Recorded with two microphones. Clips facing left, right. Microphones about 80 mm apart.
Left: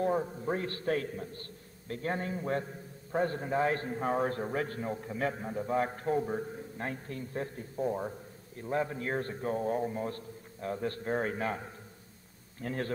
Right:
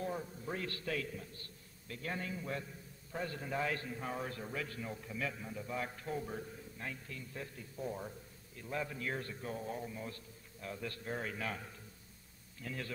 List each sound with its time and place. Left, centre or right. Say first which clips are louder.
0.0 s a man's voice: left 10 dB; left
12.5 s a man's voice: left 9 dB; left